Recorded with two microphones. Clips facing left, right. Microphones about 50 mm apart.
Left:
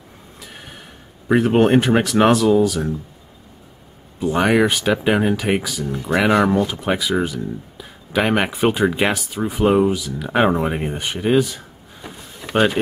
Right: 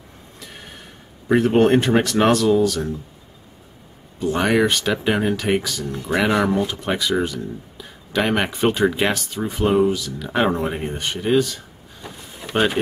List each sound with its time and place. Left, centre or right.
0.4 s a sound: centre
1.3 s speech: centre
4.2 s speech: centre